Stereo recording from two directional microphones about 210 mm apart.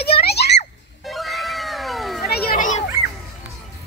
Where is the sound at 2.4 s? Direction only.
40° left (ahead or behind).